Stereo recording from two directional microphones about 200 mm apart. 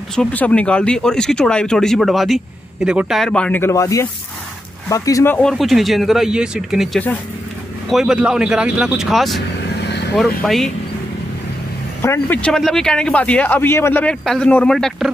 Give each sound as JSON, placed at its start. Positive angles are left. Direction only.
{"t": 0.1, "sound": "speech", "side_deg": 5}
{"t": 9.8, "sound": "vehicle", "side_deg": 55}
{"t": 10.1, "sound": "speech", "side_deg": 0}
{"t": 12.0, "sound": "speech", "side_deg": 10}